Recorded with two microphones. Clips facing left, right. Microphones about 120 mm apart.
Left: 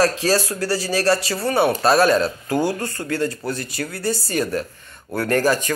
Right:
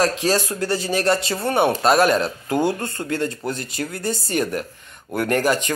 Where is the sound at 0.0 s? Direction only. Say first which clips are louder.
Left 1 dB; 20° right (ahead or behind).